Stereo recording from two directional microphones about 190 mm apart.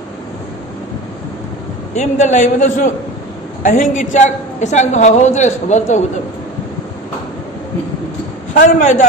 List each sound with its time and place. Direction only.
2.0 s a woman's voice: 40° left (ahead or behind)
8.5 s a woman's voice: 40° left (ahead or behind)